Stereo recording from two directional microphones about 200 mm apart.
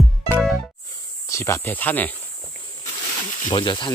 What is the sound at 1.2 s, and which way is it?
Speech, 15° left (ahead or behind).